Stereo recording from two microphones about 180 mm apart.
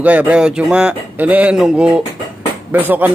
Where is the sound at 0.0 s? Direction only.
10° right (ahead or behind).